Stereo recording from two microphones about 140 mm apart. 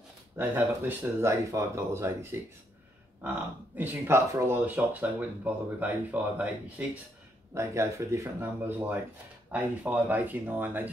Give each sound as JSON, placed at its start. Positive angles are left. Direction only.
{"t": 0.4, "sound": "speech", "side_deg": -15}
{"t": 7.5, "sound": "speech", "side_deg": -20}